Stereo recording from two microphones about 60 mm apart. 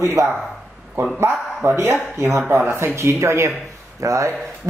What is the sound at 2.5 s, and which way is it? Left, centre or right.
A man's voice, right.